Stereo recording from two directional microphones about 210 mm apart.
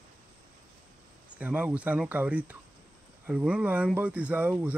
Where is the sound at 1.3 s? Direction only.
5° right (ahead or behind).